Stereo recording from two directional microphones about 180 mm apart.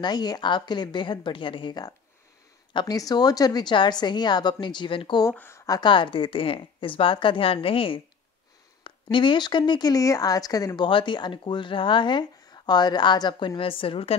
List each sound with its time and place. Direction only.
0.0 s speech: 20° left (ahead or behind)
5.3 s speech: 10° left (ahead or behind); by 14.1 s 30° left (ahead or behind)